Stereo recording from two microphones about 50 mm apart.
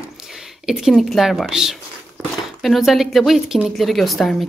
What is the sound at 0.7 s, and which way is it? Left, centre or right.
Speech, centre.